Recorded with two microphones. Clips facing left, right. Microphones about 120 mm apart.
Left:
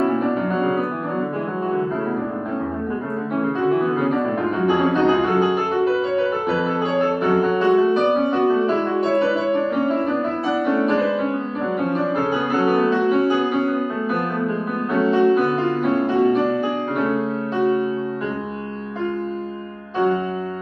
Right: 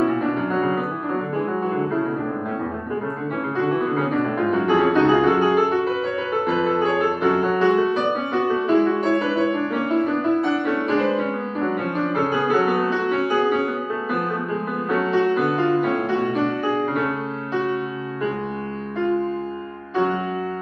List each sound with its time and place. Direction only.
0.2 s music: centre (ahead or behind)
4.6 s music: centre (ahead or behind)
8.6 s music: 35° left (ahead or behind)
12.3 s music: centre (ahead or behind)
14.9 s music: centre (ahead or behind)